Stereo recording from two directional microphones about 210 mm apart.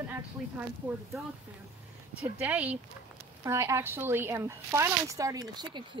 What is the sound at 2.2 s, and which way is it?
A woman's voice, 5° right (ahead or behind).